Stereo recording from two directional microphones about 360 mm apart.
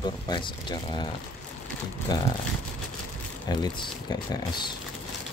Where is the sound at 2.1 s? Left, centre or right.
Centre.